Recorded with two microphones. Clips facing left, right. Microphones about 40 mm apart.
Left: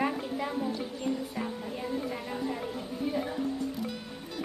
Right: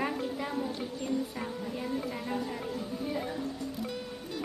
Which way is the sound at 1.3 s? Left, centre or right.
Centre.